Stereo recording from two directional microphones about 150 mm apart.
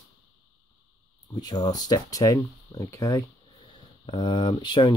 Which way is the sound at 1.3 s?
25° left (ahead or behind).